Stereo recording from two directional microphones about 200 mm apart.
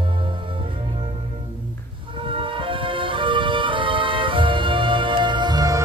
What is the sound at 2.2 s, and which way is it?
Music, 25° right (ahead or behind).